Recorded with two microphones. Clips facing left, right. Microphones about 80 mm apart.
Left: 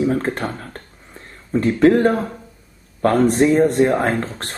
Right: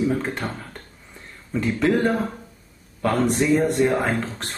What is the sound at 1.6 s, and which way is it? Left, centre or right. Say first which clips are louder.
Speech: left 7 dB; left.